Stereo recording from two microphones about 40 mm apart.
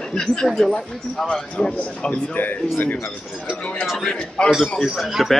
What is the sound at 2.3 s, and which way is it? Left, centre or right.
Speech, left.